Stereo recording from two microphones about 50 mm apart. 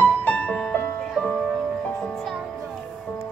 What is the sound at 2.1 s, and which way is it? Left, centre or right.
Music, centre.